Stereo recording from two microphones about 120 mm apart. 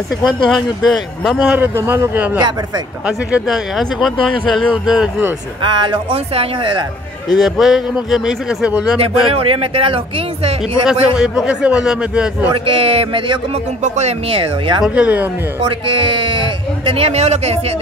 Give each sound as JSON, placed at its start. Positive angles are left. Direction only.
{"t": 0.2, "sound": "speech", "side_deg": 0}
{"t": 1.6, "sound": "a man's voice", "side_deg": -20}
{"t": 5.6, "sound": "speech", "side_deg": -40}
{"t": 7.2, "sound": "speech", "side_deg": 0}
{"t": 8.9, "sound": "a man's voice", "side_deg": -50}
{"t": 11.1, "sound": "a man's voice", "side_deg": -5}
{"t": 12.6, "sound": "a man's voice", "side_deg": -50}
{"t": 13.8, "sound": "speech", "side_deg": -75}
{"t": 14.3, "sound": "a man's voice", "side_deg": -45}
{"t": 15.0, "sound": "a man's voice", "side_deg": -15}
{"t": 15.6, "sound": "a man's voice", "side_deg": -45}